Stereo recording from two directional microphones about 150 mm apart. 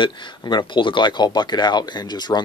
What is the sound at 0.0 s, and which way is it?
Speech, 30° left (ahead or behind).